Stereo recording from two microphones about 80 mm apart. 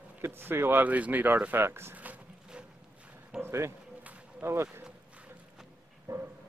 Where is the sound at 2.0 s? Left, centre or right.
Centre.